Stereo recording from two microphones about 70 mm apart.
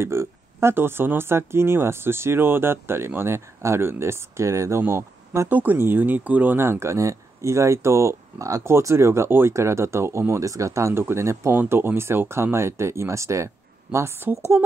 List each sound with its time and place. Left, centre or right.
0.0 s speech: right
5.5 s speech: right
6.6 s speech: right